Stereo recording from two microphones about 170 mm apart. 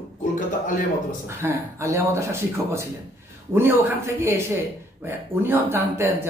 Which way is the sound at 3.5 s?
15° right (ahead or behind).